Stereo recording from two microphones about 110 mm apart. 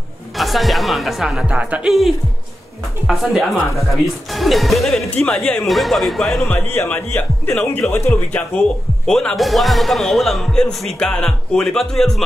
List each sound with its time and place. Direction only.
0.4 s speech: centre (ahead or behind)
6.5 s speech: 20° left (ahead or behind); by 12.2 s 5° left (ahead or behind)